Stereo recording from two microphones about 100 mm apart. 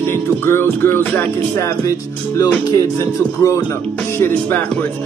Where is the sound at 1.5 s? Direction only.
35° left (ahead or behind).